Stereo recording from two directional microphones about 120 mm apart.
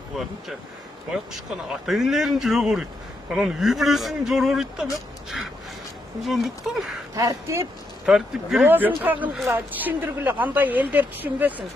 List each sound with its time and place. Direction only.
0.1 s speech: centre (ahead or behind)
7.2 s speech: 30° right (ahead or behind)
8.0 s speech: 5° right (ahead or behind)
8.6 s a woman's voice: 15° right (ahead or behind)